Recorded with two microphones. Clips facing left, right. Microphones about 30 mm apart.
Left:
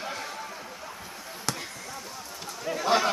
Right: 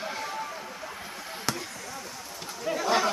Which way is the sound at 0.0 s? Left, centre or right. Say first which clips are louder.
Right 1 dB; centre.